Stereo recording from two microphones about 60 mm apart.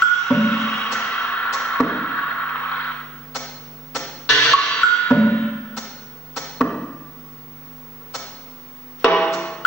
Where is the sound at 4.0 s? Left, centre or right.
Left.